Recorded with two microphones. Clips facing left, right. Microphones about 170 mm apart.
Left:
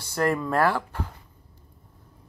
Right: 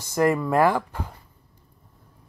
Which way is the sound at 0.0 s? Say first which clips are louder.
Right 3 dB; 15° right (ahead or behind).